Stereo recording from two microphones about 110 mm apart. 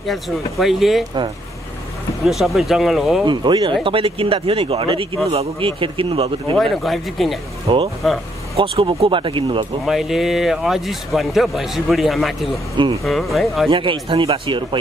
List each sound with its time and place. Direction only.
0.0 s a man's voice: centre (ahead or behind)
2.2 s a man's voice: centre (ahead or behind)
3.3 s speech: 45° right (ahead or behind)
3.8 s speech: 55° right (ahead or behind)
6.6 s a man's voice: centre (ahead or behind)
7.6 s speech: 55° right (ahead or behind)
9.8 s a man's voice: 5° right (ahead or behind)
13.7 s speech: 50° right (ahead or behind)